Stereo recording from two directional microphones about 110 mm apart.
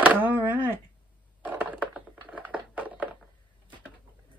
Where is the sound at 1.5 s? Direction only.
15° right (ahead or behind).